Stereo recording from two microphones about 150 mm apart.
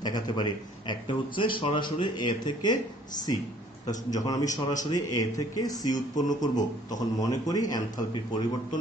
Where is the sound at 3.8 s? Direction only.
25° left (ahead or behind).